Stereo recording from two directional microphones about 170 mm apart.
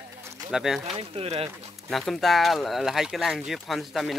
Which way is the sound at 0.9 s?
35° right (ahead or behind).